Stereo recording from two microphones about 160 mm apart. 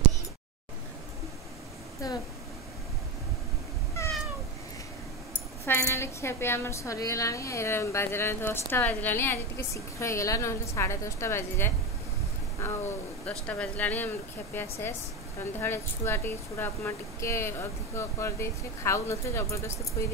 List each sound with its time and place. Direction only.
2.0 s speech: 20° left (ahead or behind)
5.7 s a woman's voice: 15° left (ahead or behind)
12.5 s a sound: 15° left (ahead or behind)
13.3 s a woman's voice: 10° left (ahead or behind)